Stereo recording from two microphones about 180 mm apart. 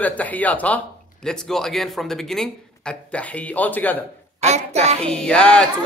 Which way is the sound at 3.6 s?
10° left (ahead or behind).